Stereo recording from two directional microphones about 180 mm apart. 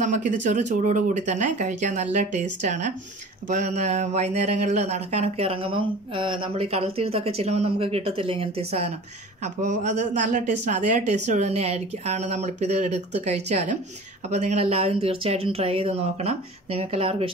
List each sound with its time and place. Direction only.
0.0 s a man's voice: 45° right (ahead or behind)